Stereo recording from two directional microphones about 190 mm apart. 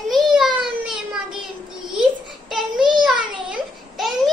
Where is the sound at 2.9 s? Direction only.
Centre (ahead or behind).